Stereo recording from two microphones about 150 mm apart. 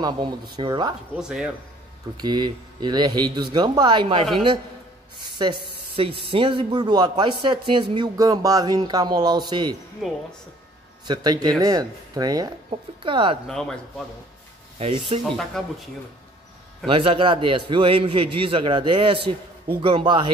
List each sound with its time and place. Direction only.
0.0 s speech: 30° right (ahead or behind)
1.1 s speech: 5° right (ahead or behind)
2.2 s speech: 30° right (ahead or behind)
5.4 s speech: 35° right (ahead or behind)
10.0 s speech: centre (ahead or behind)
11.1 s a man's voice: 25° right (ahead or behind)
13.5 s speech: 5° left (ahead or behind)
14.8 s a man's voice: 40° right (ahead or behind)
15.2 s speech: 5° left (ahead or behind)
16.8 s a man's voice: 35° right (ahead or behind)